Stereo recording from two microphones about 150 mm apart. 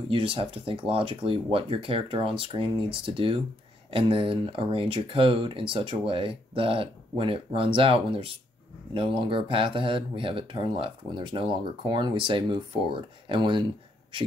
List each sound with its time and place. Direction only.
0.1 s speech: 35° right (ahead or behind)